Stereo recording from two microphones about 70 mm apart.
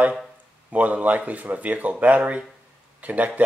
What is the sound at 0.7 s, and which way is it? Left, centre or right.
Speech, right.